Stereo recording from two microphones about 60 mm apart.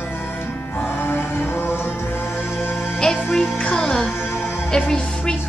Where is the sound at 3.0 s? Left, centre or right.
Centre.